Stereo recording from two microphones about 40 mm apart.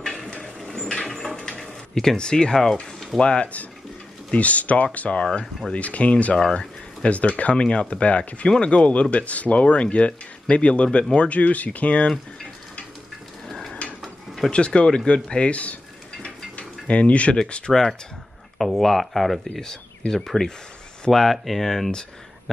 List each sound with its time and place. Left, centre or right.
0.2 s a sound: left
2.1 s speech: centre
3.2 s speech: left
4.3 s speech: left
5.2 s speech: left
5.7 s speech: left
6.3 s speech: centre
7.0 s speech: left
13.5 s mechanisms: centre
14.5 s stir: left
17.5 s speech: left
18.6 s speech: centre
19.5 s speech: centre